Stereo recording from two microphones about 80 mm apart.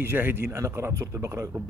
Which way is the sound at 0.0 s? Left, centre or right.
Right.